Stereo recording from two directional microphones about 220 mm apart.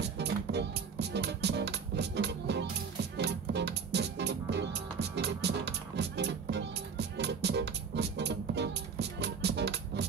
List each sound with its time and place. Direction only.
0.0 s music: 50° right (ahead or behind)